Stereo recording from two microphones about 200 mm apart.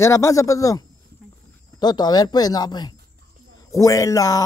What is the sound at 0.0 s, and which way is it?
A man's voice, 15° left (ahead or behind).